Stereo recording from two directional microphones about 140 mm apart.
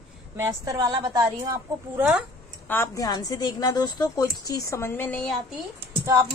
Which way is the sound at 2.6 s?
15° left (ahead or behind).